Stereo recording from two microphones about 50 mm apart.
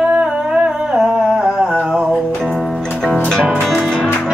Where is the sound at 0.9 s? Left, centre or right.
Centre.